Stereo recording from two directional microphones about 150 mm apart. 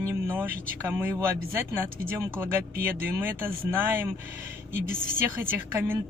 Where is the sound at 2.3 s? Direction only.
15° right (ahead or behind).